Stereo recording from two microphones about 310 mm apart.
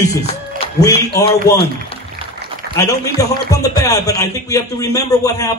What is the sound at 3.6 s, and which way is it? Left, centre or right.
A man's voice, centre.